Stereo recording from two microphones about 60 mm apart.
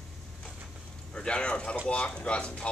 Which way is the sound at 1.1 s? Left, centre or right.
Centre.